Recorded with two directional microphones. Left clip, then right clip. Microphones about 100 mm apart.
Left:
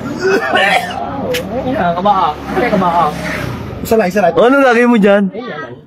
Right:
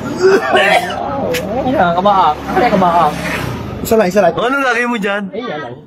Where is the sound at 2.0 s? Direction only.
25° right (ahead or behind).